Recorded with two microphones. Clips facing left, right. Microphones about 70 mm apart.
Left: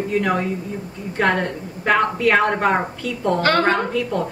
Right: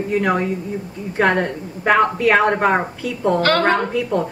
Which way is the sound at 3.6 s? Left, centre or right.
Centre.